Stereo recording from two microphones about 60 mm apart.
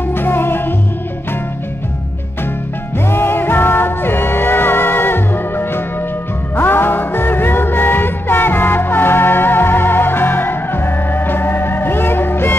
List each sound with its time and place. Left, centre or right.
0.1 s music: left
3.1 s music: left